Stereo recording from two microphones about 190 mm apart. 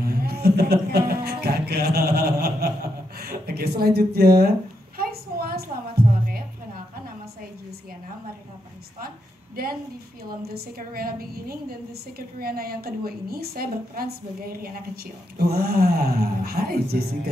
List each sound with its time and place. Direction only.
0.0 s music: 55° right (ahead or behind)
3.2 s speech: 55° right (ahead or behind)
4.9 s a sound: 50° right (ahead or behind)
9.6 s a woman's voice: 50° right (ahead or behind)